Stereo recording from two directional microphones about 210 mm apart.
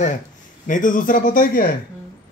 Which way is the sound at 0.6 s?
40° left (ahead or behind).